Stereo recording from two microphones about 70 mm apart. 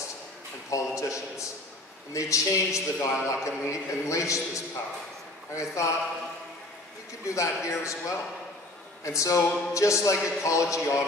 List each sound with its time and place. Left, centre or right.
0.7 s a man's voice: left
7.2 s a man's voice: left